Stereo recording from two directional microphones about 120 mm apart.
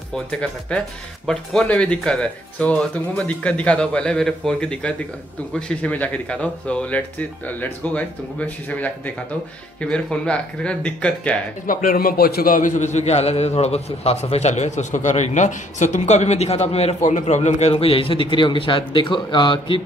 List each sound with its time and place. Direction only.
0.1 s speech: 10° left (ahead or behind)
12.5 s a man's voice: 90° left; by 19.8 s 40° left (ahead or behind)